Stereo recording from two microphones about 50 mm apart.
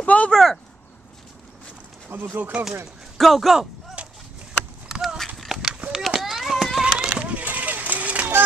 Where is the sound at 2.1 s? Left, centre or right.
Right.